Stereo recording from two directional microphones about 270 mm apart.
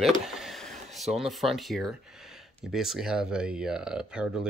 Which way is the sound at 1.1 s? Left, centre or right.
Centre.